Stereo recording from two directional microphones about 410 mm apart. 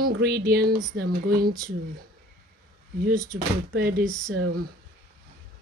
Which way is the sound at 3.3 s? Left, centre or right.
Right.